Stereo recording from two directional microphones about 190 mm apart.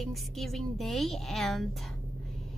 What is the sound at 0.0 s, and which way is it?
A woman's voice, centre (ahead or behind).